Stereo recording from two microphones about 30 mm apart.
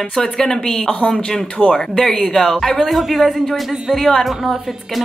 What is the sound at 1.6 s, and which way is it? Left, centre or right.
Speech, right.